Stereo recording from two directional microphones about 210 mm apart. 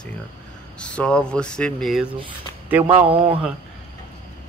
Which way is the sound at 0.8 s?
5° left (ahead or behind).